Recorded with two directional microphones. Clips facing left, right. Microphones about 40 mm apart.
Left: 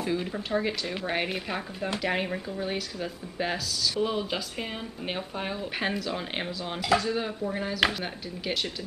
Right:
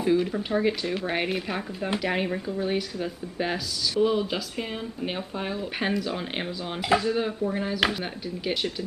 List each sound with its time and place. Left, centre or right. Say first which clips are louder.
0.0 s speech: right 6 dB; centre
6.8 s speech: right 2 dB; right
7.1 s speech: right 4 dB; centre